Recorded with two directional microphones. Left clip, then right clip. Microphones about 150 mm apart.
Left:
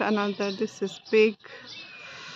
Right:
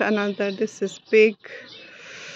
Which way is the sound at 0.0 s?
10° right (ahead or behind).